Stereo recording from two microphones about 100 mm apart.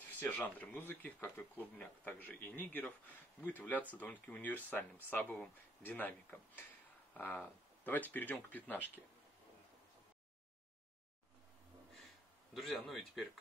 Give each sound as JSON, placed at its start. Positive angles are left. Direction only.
{"t": 0.2, "sound": "speech", "side_deg": 15}
{"t": 12.5, "sound": "a man's voice", "side_deg": 0}